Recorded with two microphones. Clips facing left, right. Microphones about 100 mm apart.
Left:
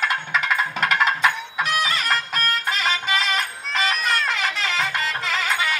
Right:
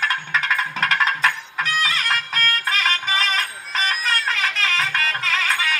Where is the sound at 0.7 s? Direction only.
10° left (ahead or behind).